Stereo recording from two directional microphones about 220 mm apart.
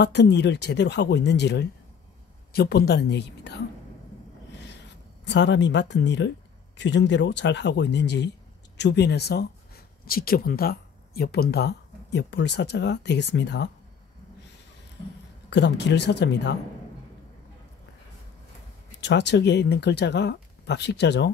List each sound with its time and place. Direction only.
0.0 s speech: 50° left (ahead or behind)
5.2 s speech: 55° left (ahead or behind)
15.5 s speech: 50° left (ahead or behind)
18.9 s speech: 50° left (ahead or behind)